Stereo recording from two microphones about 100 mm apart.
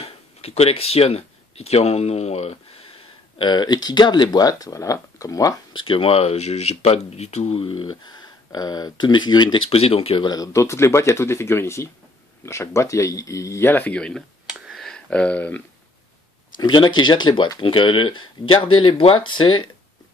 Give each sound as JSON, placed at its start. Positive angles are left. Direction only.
{"t": 0.0, "sound": "speech", "side_deg": 85}
{"t": 3.3, "sound": "speech", "side_deg": 50}
{"t": 5.8, "sound": "speech", "side_deg": 65}
{"t": 9.7, "sound": "speech", "side_deg": 75}
{"t": 10.3, "sound": "speech", "side_deg": 35}
{"t": 13.7, "sound": "speech", "side_deg": 15}
{"t": 14.5, "sound": "a sound", "side_deg": 0}
{"t": 16.5, "sound": "speech", "side_deg": 50}
{"t": 17.6, "sound": "speech", "side_deg": 60}